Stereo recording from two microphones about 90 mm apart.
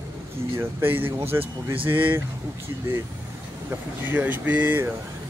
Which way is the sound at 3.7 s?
20° right (ahead or behind).